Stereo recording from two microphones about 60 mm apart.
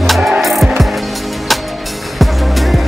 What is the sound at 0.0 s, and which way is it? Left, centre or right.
Music, centre.